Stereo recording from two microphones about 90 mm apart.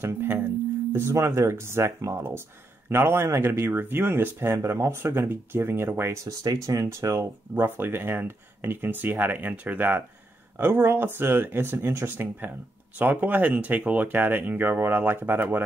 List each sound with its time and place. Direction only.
0.0 s speech: 25° right (ahead or behind)
6.2 s speech: 40° right (ahead or behind); by 15.6 s 25° right (ahead or behind)